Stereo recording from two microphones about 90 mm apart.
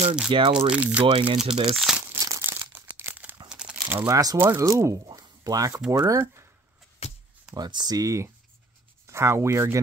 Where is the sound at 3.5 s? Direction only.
10° right (ahead or behind).